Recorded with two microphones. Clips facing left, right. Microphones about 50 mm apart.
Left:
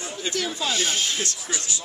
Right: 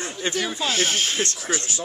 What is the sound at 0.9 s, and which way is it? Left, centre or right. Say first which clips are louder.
Speech: right 2 dB; right.